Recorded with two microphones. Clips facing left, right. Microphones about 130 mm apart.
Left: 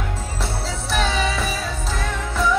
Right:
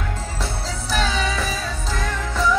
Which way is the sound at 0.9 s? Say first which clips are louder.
Left 1 dB; centre (ahead or behind).